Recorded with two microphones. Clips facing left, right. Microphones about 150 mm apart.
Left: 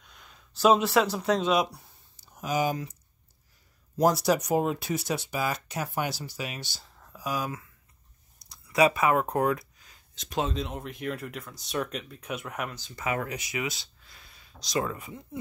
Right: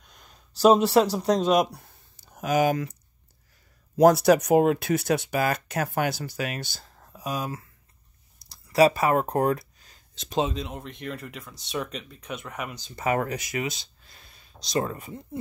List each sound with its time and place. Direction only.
0.0 s a sound: 40° right (ahead or behind)
0.7 s speech: 35° right (ahead or behind); by 2.9 s 65° right (ahead or behind)
4.0 s speech: 60° right (ahead or behind)
7.1 s speech: 25° right (ahead or behind)
8.4 s a sound: 35° right (ahead or behind)
10.5 s speech: centre (ahead or behind)
12.7 s speech: 20° right (ahead or behind)
13.0 s speech: 40° right (ahead or behind)
13.7 s speech: 20° right (ahead or behind)
14.1 s a sound: 35° right (ahead or behind)
14.5 s speech: 25° right (ahead or behind)